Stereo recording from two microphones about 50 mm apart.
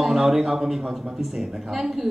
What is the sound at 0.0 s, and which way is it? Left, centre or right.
Speech, centre.